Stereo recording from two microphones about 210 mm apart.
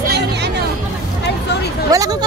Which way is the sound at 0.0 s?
50° right (ahead or behind).